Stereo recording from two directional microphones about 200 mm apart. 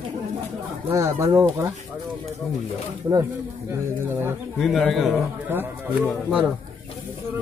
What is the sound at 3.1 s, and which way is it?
Speech, 20° right (ahead or behind).